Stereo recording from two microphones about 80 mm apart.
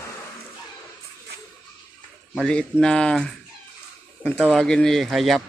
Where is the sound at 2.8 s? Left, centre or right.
Centre.